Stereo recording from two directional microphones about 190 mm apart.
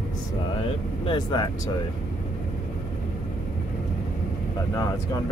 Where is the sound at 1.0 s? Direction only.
20° left (ahead or behind).